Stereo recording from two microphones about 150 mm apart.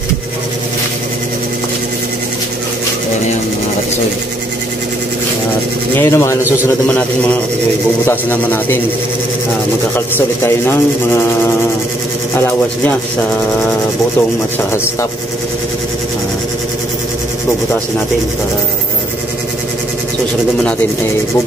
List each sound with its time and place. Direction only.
5.9 s sanding: 15° left (ahead or behind)
9.9 s sanding: 15° left (ahead or behind)
12.4 s sanding: 15° left (ahead or behind)